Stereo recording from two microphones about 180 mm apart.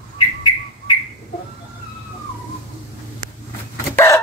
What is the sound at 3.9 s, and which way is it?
Chicken, 15° left (ahead or behind).